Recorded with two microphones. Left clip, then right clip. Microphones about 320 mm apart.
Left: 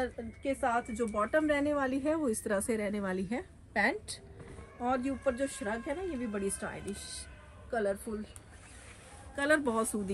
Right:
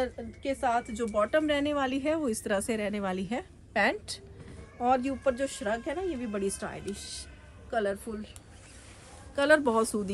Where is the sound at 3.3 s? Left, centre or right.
Centre.